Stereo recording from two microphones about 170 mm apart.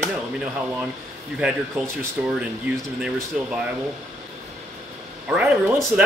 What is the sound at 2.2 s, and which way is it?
Speech, 5° right (ahead or behind).